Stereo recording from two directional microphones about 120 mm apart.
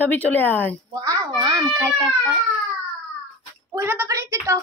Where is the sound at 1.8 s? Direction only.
25° right (ahead or behind).